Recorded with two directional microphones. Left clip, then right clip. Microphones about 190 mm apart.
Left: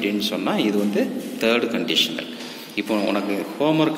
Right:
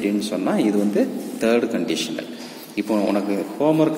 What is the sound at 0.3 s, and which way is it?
A man's voice, 15° right (ahead or behind).